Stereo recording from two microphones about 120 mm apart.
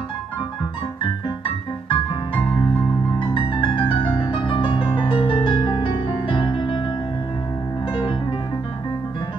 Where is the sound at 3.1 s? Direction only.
40° left (ahead or behind).